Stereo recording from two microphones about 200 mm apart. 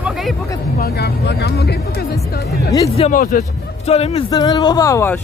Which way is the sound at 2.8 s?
30° left (ahead or behind).